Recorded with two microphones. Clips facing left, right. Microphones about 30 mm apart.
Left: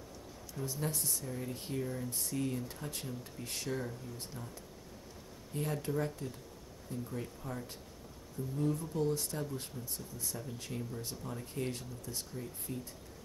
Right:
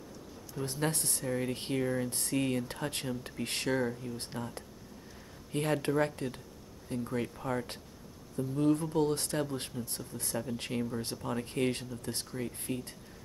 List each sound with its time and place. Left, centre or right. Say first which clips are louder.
0.6 s speech: right 5 dB; right
8.4 s speech: right 7 dB; right